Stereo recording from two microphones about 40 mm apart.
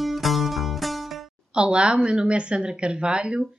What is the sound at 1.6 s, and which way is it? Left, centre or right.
A woman's voice, right.